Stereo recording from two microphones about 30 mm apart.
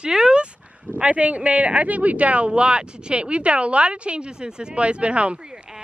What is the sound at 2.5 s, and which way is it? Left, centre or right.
Speech, right.